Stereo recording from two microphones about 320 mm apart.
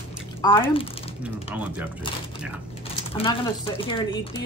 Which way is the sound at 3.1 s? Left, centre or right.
Centre.